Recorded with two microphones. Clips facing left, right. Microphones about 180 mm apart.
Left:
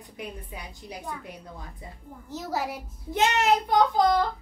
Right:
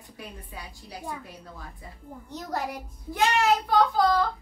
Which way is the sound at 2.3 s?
5° left (ahead or behind).